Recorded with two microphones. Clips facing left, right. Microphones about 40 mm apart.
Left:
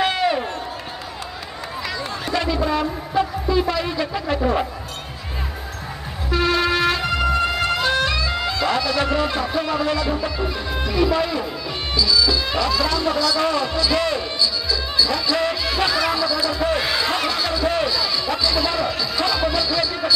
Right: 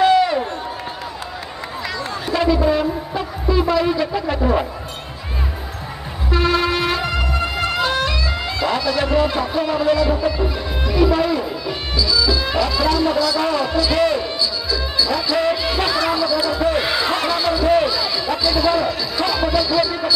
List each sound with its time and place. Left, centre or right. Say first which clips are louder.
0.0 s run: right 5 dB; centre
2.2 s a sound: right 5 dB; centre
6.3 s music: right 1 dB; centre
11.0 s speech: right 3 dB; centre